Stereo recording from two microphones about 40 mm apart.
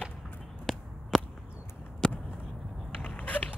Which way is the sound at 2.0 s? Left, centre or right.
Left.